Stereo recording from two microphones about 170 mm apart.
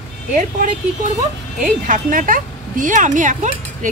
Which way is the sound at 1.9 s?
55° right (ahead or behind).